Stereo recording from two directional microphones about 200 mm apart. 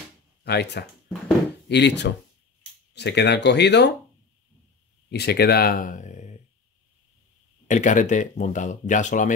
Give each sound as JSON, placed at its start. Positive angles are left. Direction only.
{"t": 0.4, "sound": "speech", "side_deg": 55}
{"t": 5.1, "sound": "speech", "side_deg": 55}
{"t": 7.6, "sound": "speech", "side_deg": 40}